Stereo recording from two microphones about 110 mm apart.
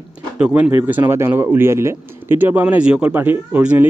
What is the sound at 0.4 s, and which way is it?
Speech, 15° right (ahead or behind).